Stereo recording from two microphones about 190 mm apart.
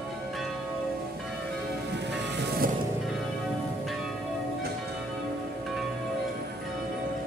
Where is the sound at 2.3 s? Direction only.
55° right (ahead or behind).